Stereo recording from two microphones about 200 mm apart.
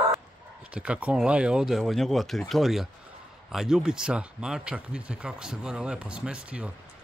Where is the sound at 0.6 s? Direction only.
5° right (ahead or behind).